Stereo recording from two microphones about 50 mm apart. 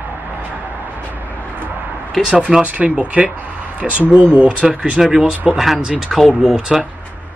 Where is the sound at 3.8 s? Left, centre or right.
Centre.